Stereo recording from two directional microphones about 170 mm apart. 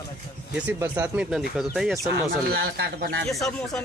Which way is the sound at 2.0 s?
70° right (ahead or behind).